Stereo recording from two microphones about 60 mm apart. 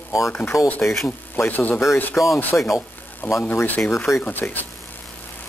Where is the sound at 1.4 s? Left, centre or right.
Left.